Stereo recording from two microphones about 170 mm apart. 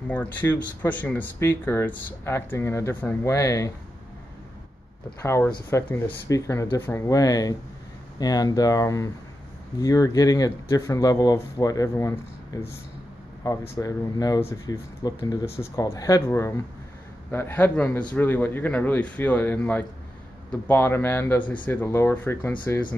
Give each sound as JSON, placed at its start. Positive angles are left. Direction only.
{"t": 0.1, "sound": "speech", "side_deg": 10}
{"t": 5.2, "sound": "speech", "side_deg": 15}
{"t": 13.4, "sound": "speech", "side_deg": 20}